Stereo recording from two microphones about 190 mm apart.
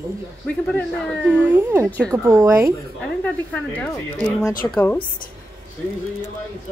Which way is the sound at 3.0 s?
5° left (ahead or behind).